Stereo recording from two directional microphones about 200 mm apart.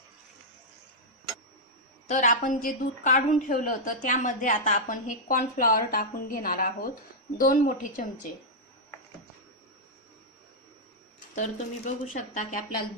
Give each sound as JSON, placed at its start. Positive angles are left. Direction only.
{"t": 2.0, "sound": "a woman's voice", "side_deg": 40}
{"t": 11.3, "sound": "a woman's voice", "side_deg": 40}